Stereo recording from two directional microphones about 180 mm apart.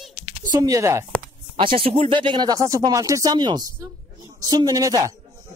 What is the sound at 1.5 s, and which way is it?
Speech, 30° right (ahead or behind).